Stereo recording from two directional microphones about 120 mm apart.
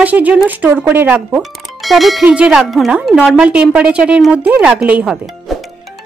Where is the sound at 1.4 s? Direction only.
Centre (ahead or behind).